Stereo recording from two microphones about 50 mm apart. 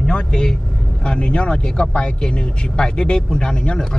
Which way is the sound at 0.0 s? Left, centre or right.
Centre.